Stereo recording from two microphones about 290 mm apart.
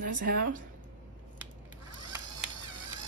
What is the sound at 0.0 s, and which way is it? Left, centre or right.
Speech, right.